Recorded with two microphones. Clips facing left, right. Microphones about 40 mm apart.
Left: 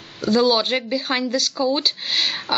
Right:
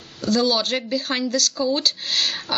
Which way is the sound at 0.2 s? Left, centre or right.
Centre.